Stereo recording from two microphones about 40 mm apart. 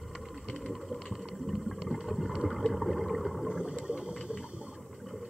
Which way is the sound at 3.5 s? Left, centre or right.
Right.